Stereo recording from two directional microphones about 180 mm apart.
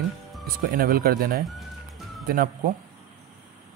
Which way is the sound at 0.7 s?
55° right (ahead or behind).